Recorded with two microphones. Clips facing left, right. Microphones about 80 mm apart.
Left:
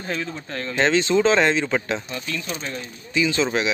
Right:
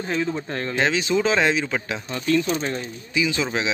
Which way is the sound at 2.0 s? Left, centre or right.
Right.